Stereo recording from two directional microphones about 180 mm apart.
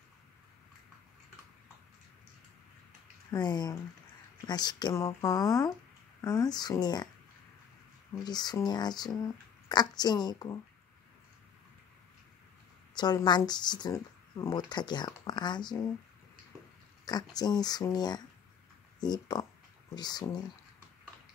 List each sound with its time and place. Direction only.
3.3 s speech: 25° left (ahead or behind)
8.2 s speech: 20° left (ahead or behind)
12.9 s speech: 25° left (ahead or behind)
17.0 s speech: 20° left (ahead or behind)